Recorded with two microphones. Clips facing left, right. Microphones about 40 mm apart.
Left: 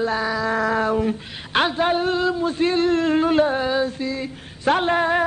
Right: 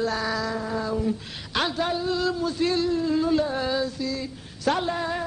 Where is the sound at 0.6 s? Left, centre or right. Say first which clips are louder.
Left 7 dB; left.